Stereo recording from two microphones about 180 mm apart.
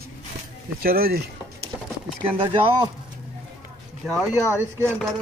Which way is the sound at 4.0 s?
Centre (ahead or behind).